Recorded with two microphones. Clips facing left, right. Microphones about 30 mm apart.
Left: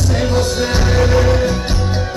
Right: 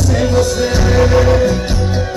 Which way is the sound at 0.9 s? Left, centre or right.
Centre.